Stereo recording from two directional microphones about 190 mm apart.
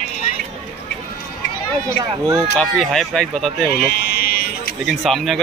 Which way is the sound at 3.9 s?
55° left (ahead or behind).